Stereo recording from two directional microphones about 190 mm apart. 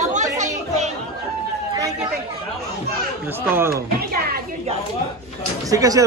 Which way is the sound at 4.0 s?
55° right (ahead or behind).